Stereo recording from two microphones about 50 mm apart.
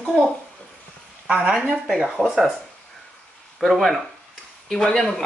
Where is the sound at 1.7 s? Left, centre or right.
Centre.